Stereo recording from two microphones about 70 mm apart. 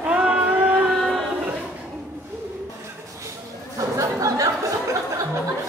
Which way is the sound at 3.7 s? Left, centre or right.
Right.